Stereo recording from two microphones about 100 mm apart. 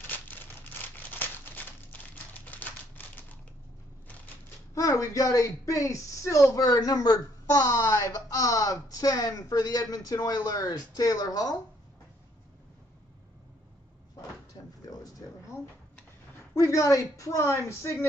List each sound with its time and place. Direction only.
0.9 s crumpling: 20° left (ahead or behind)
4.7 s a woman's voice: 35° left (ahead or behind)
14.5 s drawer open or close: 35° left (ahead or behind)
16.5 s a woman's voice: 30° left (ahead or behind)